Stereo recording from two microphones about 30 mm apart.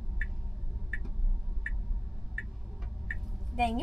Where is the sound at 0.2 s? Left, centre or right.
Centre.